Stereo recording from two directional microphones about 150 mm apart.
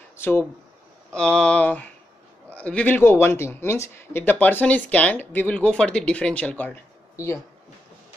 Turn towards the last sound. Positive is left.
turn(degrees=20)  # may be behind; listen again after turning